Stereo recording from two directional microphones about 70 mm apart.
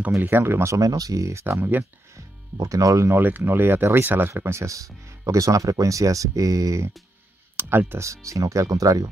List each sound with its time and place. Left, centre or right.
0.2 s speech: right
0.7 s speech: right
1.4 s speech: right
2.1 s speech: right
3.1 s speech: right
4.6 s speech: right
7.6 s speech: right
8.0 s speech: right